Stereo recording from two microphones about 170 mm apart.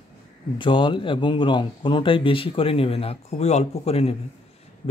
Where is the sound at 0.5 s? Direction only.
30° left (ahead or behind).